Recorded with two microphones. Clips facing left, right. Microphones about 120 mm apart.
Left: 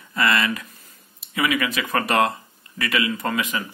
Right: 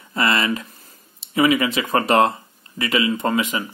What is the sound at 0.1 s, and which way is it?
Speech, 25° right (ahead or behind).